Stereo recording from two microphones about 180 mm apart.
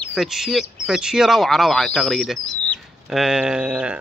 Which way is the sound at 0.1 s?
Centre (ahead or behind).